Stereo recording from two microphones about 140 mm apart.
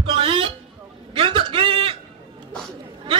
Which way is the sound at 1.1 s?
40° right (ahead or behind).